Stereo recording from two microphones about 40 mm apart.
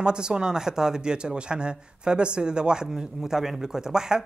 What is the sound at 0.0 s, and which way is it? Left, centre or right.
Speech, centre.